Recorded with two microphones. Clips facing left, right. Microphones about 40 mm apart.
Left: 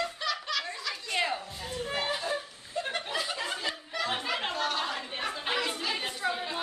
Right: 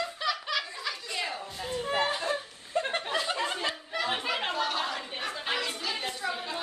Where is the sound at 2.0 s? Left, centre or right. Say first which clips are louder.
Right 1 dB; right.